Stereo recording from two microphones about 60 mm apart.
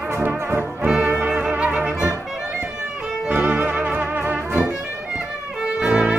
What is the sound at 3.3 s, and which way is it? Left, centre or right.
Brass instrument, right.